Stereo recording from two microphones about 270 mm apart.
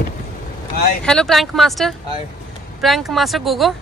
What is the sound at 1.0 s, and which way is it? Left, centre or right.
A woman's voice, centre.